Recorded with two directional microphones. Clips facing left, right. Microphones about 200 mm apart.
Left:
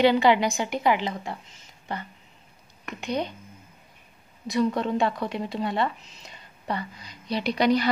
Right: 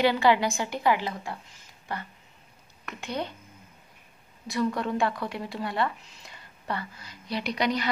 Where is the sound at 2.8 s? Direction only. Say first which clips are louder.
Left 4 dB; 15° left (ahead or behind).